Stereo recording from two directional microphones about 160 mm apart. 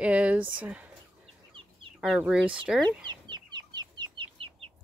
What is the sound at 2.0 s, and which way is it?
Speech, 5° right (ahead or behind).